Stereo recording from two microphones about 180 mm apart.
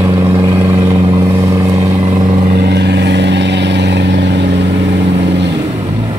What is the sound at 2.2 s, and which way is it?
Vehicle, 40° right (ahead or behind).